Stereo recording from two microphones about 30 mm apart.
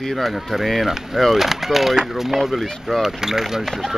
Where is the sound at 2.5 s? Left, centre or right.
Centre.